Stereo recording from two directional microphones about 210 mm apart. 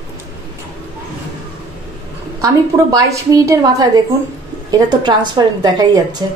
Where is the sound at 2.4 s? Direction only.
15° right (ahead or behind).